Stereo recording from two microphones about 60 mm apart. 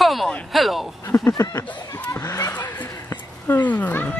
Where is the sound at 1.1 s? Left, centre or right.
Left.